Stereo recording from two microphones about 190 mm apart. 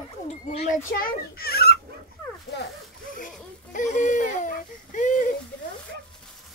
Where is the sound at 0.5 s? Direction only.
40° left (ahead or behind).